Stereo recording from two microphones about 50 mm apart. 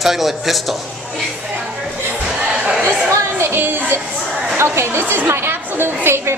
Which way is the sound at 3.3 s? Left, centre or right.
Right.